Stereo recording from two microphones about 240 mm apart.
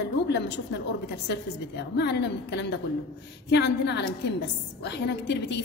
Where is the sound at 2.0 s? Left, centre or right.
Left.